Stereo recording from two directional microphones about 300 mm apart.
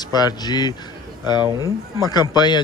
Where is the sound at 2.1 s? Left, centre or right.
Centre.